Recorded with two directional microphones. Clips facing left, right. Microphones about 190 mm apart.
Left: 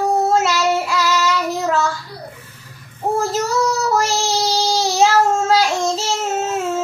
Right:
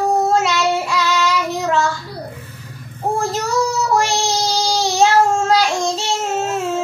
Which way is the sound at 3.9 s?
5° left (ahead or behind).